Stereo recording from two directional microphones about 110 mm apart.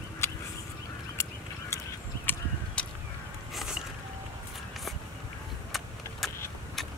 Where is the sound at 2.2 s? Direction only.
10° left (ahead or behind).